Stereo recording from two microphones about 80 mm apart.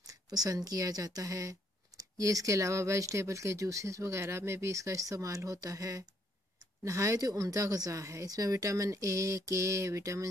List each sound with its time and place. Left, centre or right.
0.0 s speech: right